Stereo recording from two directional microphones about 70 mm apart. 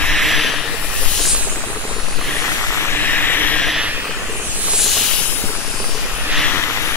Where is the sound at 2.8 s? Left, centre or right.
Left.